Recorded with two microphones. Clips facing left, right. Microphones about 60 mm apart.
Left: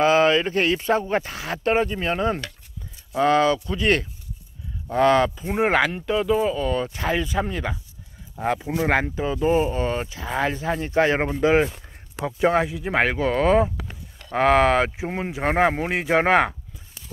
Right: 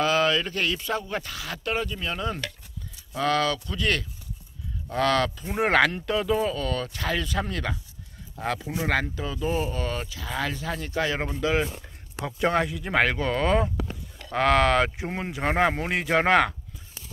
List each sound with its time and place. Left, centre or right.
0.0 s speech: left
8.6 s speech: left
12.3 s speech: centre